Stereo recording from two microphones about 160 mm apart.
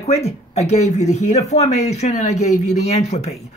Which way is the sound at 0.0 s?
40° left (ahead or behind).